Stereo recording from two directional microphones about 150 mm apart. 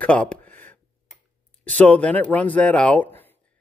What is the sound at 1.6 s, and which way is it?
Speech, 10° left (ahead or behind).